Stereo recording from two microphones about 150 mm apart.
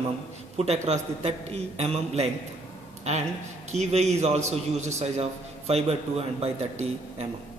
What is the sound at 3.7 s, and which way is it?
A man's voice, 50° right (ahead or behind).